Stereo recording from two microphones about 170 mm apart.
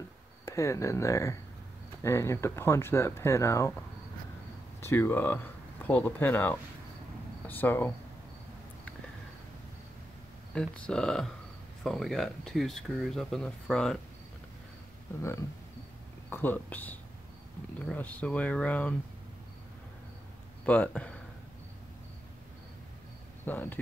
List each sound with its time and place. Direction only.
0.5 s speech: 15° left (ahead or behind)
4.7 s speech: 15° left (ahead or behind)
10.5 s speech: 5° left (ahead or behind)
16.3 s speech: 10° left (ahead or behind)
20.6 s speech: 10° left (ahead or behind)
23.4 s speech: 10° left (ahead or behind)